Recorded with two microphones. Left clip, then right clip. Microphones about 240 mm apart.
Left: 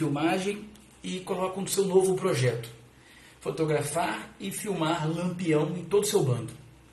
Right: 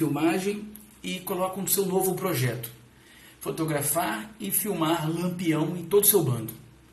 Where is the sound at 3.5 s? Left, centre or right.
Centre.